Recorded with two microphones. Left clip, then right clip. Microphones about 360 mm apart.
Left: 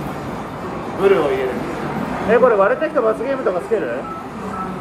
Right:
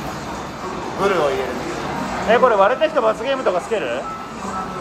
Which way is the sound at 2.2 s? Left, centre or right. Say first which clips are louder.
Left 1 dB; centre.